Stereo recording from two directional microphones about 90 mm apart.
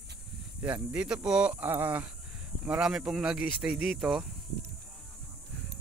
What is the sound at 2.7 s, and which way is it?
Speech, 5° right (ahead or behind).